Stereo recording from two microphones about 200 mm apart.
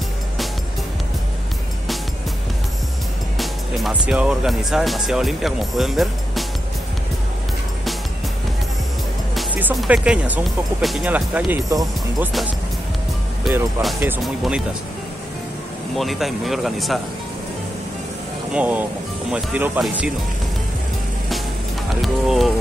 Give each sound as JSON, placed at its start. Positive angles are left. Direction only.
{"t": 3.3, "sound": "speech", "side_deg": 0}
{"t": 9.3, "sound": "speech", "side_deg": -5}
{"t": 11.7, "sound": "speech", "side_deg": -20}
{"t": 13.5, "sound": "speech", "side_deg": 0}
{"t": 16.0, "sound": "speech", "side_deg": 0}
{"t": 18.5, "sound": "speech", "side_deg": -5}
{"t": 22.0, "sound": "speech", "side_deg": 0}